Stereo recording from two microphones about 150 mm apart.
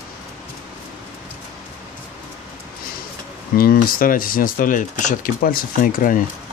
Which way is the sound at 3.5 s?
75° left (ahead or behind).